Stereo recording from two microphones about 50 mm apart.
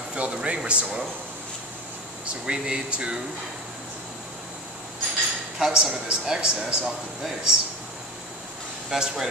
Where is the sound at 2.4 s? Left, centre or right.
Centre.